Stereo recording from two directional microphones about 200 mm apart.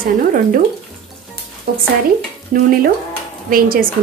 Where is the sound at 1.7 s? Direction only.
50° right (ahead or behind).